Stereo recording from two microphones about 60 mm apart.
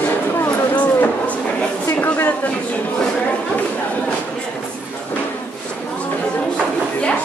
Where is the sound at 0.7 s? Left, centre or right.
Left.